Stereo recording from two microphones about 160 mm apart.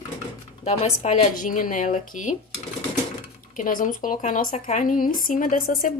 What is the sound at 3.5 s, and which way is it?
Speech, 55° left (ahead or behind).